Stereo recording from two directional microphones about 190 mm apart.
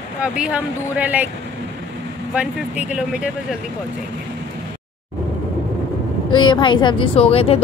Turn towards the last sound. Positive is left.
turn(degrees=30)  # may be behind; listen again after turning